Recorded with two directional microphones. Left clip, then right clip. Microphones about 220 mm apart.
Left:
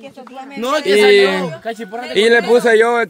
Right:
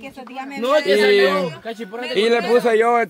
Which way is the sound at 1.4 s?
50° left (ahead or behind).